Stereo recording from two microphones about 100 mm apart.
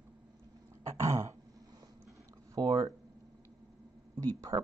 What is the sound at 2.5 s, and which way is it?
Speech, 35° right (ahead or behind).